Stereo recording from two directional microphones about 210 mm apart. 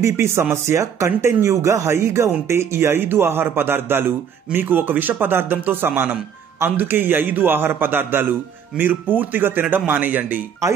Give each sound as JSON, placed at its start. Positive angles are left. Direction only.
{"t": 0.0, "sound": "speech", "side_deg": -10}